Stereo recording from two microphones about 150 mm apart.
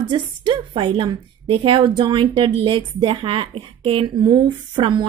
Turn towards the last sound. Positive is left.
turn(degrees=-30)  # may be behind; listen again after turning